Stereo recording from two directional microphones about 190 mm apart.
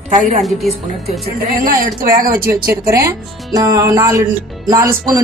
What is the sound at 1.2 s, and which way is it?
Speech, 50° right (ahead or behind).